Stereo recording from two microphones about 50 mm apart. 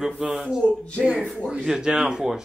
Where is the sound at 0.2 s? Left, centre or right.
Centre.